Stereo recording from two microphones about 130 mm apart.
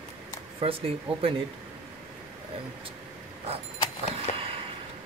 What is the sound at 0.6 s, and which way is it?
Speech, 45° right (ahead or behind).